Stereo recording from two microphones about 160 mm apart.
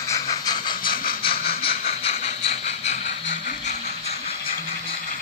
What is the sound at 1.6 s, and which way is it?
Train, 40° left (ahead or behind).